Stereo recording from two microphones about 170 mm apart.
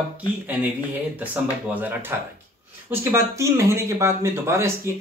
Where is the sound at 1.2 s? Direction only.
10° right (ahead or behind).